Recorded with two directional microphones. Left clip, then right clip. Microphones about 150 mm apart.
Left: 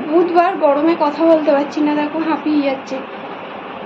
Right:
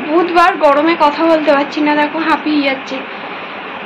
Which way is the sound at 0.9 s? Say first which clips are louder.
Right 2 dB; 25° right (ahead or behind).